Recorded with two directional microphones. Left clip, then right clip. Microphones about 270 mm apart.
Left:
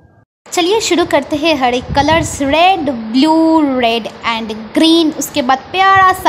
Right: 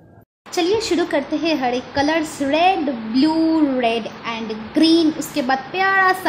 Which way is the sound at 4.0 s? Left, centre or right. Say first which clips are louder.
Left 8 dB; centre.